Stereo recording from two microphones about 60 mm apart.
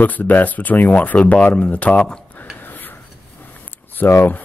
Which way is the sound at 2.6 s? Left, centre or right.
Left.